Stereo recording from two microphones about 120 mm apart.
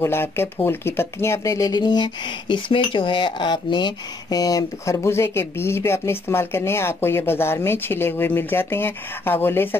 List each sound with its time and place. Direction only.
0.0 s speech: 20° left (ahead or behind)